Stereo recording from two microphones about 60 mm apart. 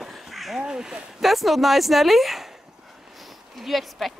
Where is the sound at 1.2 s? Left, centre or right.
Centre.